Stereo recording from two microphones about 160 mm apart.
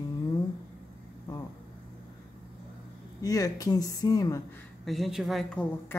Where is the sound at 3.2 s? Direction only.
20° left (ahead or behind).